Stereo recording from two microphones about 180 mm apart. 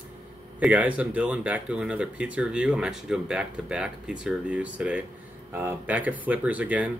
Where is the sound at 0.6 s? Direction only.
10° right (ahead or behind).